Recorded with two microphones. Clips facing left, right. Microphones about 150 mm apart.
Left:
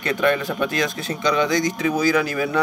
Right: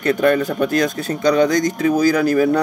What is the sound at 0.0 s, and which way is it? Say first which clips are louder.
Speech: right 5 dB; 45° right (ahead or behind).